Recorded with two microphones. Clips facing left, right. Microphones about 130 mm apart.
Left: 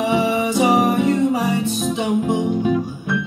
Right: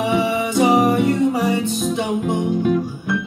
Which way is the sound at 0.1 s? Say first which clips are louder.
Left 1 dB; 15° left (ahead or behind).